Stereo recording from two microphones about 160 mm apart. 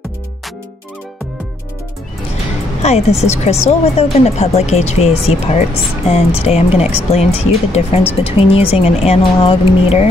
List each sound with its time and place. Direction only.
2.8 s speech: 40° left (ahead or behind)